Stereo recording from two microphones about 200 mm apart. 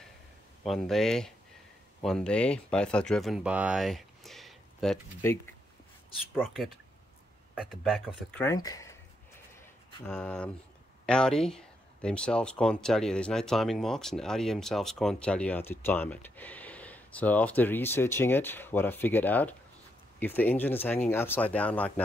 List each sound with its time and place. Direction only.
0.7 s speech: centre (ahead or behind)
5.2 s speech: 10° left (ahead or behind)
6.3 s speech: centre (ahead or behind)
8.3 s speech: 10° left (ahead or behind)
8.5 s a sound: 15° left (ahead or behind)
10.0 s speech: 5° left (ahead or behind)